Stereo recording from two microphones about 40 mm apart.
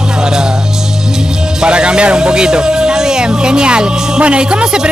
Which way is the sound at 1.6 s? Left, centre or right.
Right.